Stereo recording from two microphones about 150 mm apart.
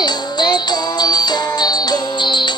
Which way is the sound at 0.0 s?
30° left (ahead or behind).